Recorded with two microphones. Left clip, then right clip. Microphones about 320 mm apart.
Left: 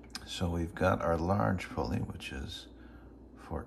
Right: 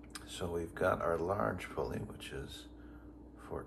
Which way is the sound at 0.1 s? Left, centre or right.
Left.